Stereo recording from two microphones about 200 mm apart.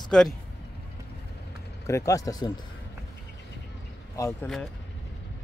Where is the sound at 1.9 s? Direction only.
15° left (ahead or behind).